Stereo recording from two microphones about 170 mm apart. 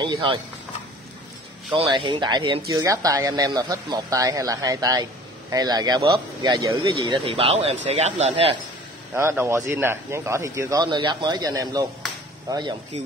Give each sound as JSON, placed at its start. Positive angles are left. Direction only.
{"t": 0.0, "sound": "speech", "side_deg": -30}
{"t": 1.7, "sound": "speech", "side_deg": -30}
{"t": 7.0, "sound": "speech", "side_deg": -30}
{"t": 9.1, "sound": "speech", "side_deg": -15}